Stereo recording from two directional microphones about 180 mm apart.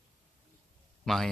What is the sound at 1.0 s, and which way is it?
Speech, centre (ahead or behind).